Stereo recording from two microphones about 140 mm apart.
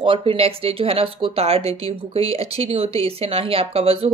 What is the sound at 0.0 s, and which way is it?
A woman's voice, 40° right (ahead or behind).